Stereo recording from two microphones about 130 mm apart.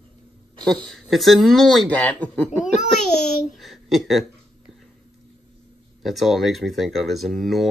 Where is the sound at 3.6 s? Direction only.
Centre (ahead or behind).